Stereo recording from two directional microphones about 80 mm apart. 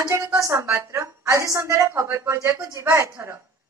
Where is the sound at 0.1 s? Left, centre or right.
Right.